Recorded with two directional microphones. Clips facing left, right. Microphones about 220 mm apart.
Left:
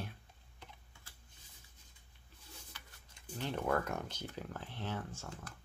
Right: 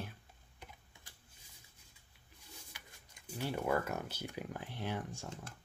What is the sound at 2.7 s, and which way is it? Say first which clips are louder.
Speech: even; 15° right (ahead or behind).